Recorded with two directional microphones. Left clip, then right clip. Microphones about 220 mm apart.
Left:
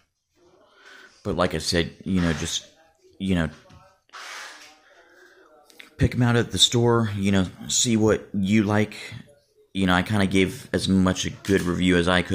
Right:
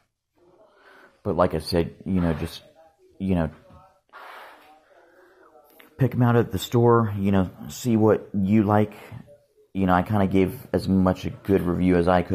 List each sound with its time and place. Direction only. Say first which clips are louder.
1.2 s speech: right 2 dB; 10° left (ahead or behind)
5.8 s speech: right 1 dB; 10° left (ahead or behind)